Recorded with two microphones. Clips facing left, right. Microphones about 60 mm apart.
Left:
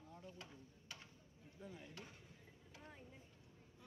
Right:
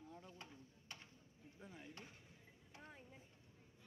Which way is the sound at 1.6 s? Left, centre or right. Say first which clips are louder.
Left 2 dB; right.